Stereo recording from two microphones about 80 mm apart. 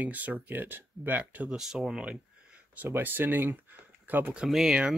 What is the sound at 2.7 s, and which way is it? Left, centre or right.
Speech, right.